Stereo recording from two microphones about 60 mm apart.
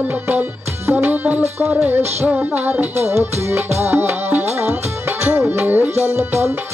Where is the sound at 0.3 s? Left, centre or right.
Right.